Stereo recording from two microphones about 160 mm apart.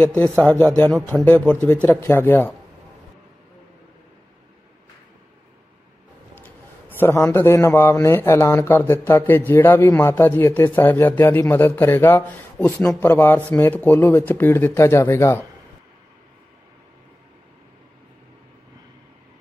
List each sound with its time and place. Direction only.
0.0 s a man's voice: 10° left (ahead or behind)
6.3 s a man's voice: 10° left (ahead or behind)